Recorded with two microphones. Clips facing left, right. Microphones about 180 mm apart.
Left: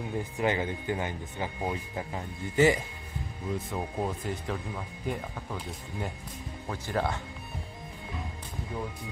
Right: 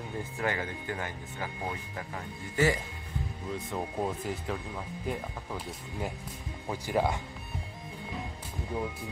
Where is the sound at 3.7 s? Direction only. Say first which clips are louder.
Right 3 dB; centre (ahead or behind).